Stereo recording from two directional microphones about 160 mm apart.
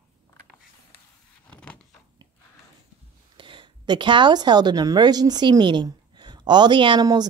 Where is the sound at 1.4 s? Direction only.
5° left (ahead or behind).